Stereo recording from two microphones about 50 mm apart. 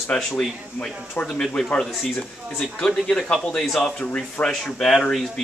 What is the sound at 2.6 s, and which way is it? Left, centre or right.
Speech, centre.